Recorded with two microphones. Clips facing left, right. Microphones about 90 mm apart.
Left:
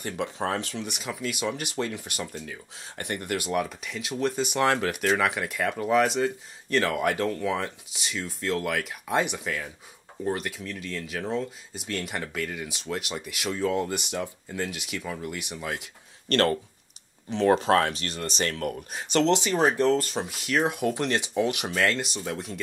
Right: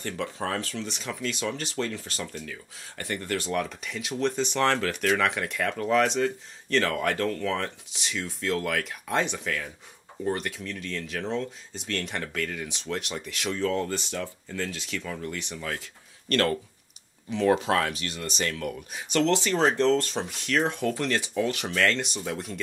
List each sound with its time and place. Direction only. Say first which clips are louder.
0.0 s speech: left 2 dB; 15° left (ahead or behind)
16.3 s speech: left 2 dB; 35° left (ahead or behind)
19.2 s speech: even; 20° left (ahead or behind); by 22.6 s centre (ahead or behind)